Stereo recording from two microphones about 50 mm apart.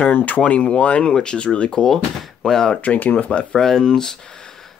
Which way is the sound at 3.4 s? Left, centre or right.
Centre.